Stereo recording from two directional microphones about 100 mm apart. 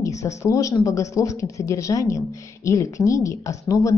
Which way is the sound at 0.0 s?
30° left (ahead or behind).